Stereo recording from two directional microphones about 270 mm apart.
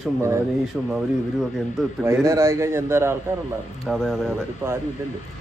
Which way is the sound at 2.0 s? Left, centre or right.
Centre.